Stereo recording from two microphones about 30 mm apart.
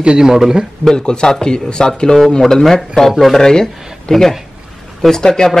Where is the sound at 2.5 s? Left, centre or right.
Centre.